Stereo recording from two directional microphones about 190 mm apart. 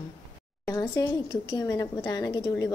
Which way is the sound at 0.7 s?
15° left (ahead or behind).